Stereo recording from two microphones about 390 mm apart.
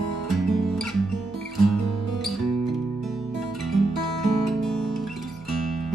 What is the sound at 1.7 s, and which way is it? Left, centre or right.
Music, right.